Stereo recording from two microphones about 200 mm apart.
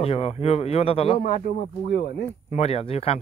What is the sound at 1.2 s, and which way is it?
Speech, 45° left (ahead or behind).